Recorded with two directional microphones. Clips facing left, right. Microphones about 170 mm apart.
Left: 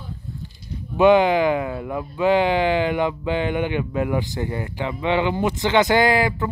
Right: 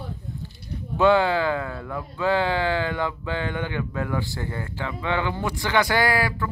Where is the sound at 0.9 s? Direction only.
15° left (ahead or behind).